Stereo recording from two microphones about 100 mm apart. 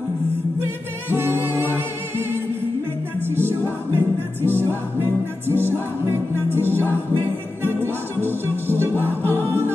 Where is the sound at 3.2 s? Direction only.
20° right (ahead or behind).